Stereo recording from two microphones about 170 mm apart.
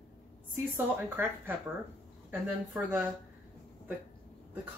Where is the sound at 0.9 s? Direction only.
10° right (ahead or behind).